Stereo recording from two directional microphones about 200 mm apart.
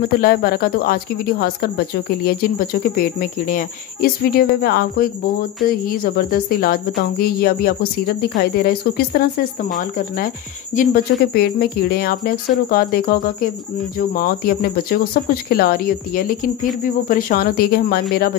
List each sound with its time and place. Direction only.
0.0 s speech: 50° left (ahead or behind)